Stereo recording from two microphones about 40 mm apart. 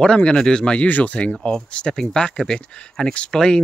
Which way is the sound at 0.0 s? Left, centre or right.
Left.